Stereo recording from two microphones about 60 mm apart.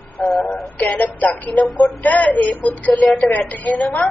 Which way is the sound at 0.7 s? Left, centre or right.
Left.